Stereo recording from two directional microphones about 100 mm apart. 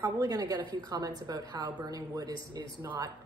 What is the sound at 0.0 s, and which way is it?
A woman's voice, 40° right (ahead or behind).